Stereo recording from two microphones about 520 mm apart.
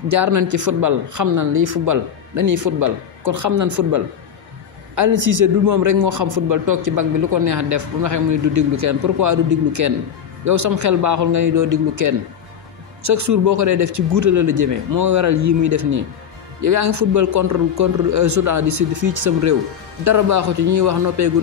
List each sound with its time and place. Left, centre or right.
0.1 s a man's voice: right